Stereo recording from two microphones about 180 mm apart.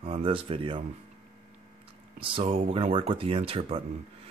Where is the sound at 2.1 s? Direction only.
30° right (ahead or behind).